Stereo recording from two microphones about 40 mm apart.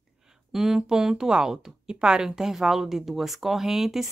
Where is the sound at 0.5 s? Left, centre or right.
Centre.